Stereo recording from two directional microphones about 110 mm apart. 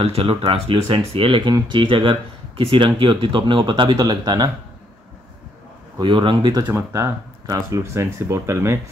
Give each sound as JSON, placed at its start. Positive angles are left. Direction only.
{"t": 0.0, "sound": "speech", "side_deg": -60}
{"t": 5.9, "sound": "speech", "side_deg": -50}
{"t": 6.7, "sound": "speech", "side_deg": -25}